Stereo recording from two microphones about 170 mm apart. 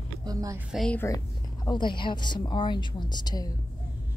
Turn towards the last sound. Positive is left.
turn(degrees=25)  # may be behind; listen again after turning